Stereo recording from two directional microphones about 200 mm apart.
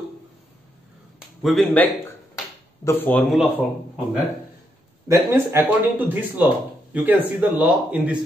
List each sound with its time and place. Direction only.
1.4 s speech: centre (ahead or behind)
5.0 s speech: 15° right (ahead or behind)